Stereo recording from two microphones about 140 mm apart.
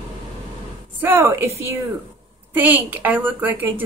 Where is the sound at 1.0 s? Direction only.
15° right (ahead or behind).